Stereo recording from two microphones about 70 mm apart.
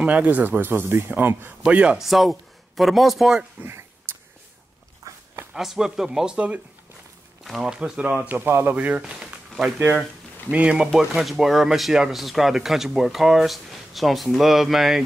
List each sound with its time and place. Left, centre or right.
0.0 s speech: right
1.6 s speech: centre
2.0 s speech: centre
3.6 s a sound: right
5.1 s dog: right
5.5 s speech: centre
7.4 s speech: centre
8.0 s speech: right
8.7 s speech: centre
9.0 s a sound: centre
10.5 s speech: centre
10.9 s speech: centre